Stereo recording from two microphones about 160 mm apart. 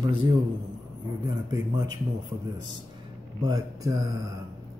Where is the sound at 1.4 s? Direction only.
25° right (ahead or behind).